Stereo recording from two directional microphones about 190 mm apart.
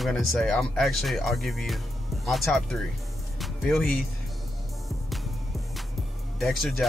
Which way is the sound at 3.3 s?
Centre (ahead or behind).